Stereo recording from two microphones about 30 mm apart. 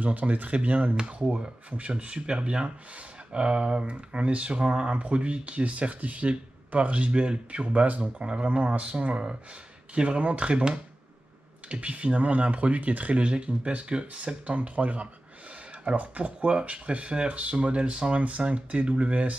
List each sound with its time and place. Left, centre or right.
0.0 s speech: right
0.9 s speech: right
1.7 s speech: right
4.1 s speech: right
10.5 s speech: right
11.7 s speech: right